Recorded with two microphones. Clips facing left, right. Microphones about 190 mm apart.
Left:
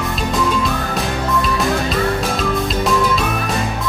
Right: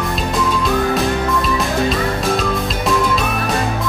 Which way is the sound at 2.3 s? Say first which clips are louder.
Even; centre (ahead or behind).